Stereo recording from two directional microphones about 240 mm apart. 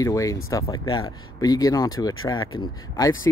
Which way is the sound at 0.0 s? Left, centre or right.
Centre.